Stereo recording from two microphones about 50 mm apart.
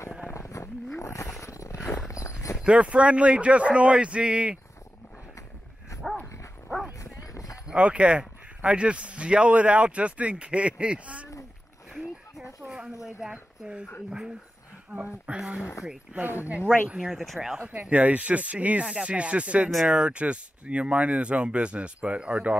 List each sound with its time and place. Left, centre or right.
0.3 s a sound: left
0.9 s roaring cats: left
1.4 s a sound: left
2.6 s speech: right
7.6 s speech: right
12.6 s a sound: centre
13.0 s speech: centre
14.9 s speech: right
17.8 s speech: right